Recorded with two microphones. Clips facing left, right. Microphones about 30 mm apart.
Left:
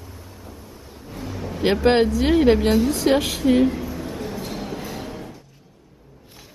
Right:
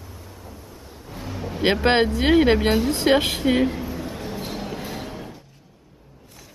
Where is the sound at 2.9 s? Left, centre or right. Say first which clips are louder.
Even; right.